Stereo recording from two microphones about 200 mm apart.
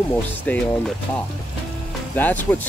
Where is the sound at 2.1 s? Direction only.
10° left (ahead or behind).